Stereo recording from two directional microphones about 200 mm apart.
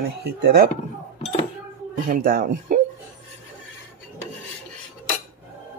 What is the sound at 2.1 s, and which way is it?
Speech, 45° right (ahead or behind).